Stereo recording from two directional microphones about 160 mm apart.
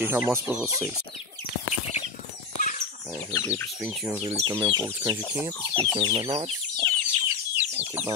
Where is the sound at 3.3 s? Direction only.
20° left (ahead or behind).